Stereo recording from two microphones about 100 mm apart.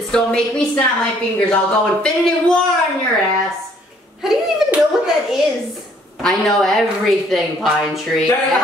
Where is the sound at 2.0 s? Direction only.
5° left (ahead or behind).